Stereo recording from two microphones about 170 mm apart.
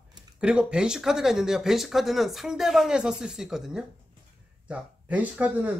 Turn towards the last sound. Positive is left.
turn(degrees=-5)  # may be behind; listen again after turning